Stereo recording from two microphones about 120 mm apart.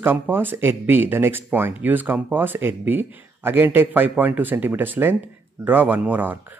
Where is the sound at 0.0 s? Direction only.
15° right (ahead or behind).